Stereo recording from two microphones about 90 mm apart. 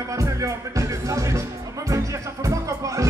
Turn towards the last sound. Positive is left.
turn(degrees=-35)  # may be behind; listen again after turning